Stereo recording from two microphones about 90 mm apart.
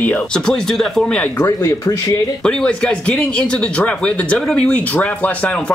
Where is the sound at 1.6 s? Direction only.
35° left (ahead or behind).